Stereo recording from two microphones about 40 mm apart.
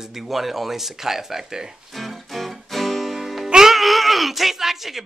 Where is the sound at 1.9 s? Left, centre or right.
Centre.